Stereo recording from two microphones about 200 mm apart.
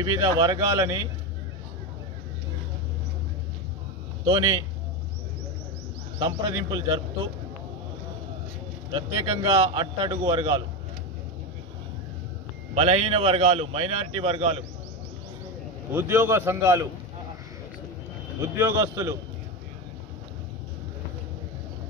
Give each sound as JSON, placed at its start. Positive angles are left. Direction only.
{"t": 0.0, "sound": "a man's voice", "side_deg": -20}
{"t": 6.1, "sound": "a man's voice", "side_deg": -20}
{"t": 8.9, "sound": "a man's voice", "side_deg": -25}
{"t": 12.7, "sound": "a man's voice", "side_deg": -30}
{"t": 15.9, "sound": "a man's voice", "side_deg": -10}
{"t": 18.4, "sound": "a man's voice", "side_deg": -15}